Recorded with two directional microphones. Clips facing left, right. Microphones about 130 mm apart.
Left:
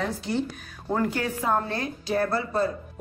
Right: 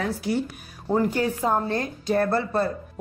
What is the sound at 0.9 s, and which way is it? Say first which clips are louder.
Speech: right 4 dB; 15° right (ahead or behind).